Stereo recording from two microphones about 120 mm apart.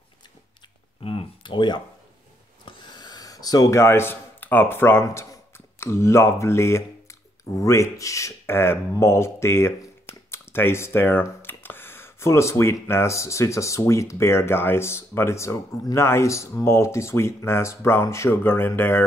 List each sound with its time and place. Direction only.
1.0 s speech: 45° left (ahead or behind); by 19.0 s 20° left (ahead or behind)